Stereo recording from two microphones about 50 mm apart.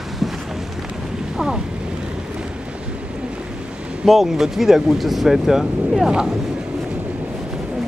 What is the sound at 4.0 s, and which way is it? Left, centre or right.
Speech, centre.